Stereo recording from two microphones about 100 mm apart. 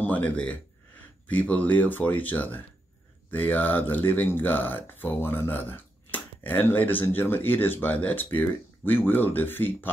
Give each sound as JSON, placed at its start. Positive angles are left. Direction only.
{"t": 0.0, "sound": "speech", "side_deg": 15}